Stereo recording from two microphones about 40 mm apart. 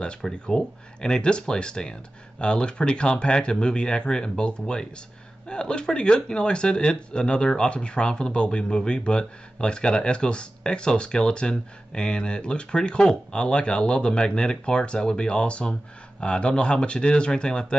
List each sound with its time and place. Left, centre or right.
0.2 s speech: centre